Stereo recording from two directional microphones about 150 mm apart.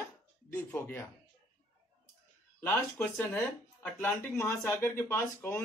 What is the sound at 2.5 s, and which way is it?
Speech, 15° left (ahead or behind).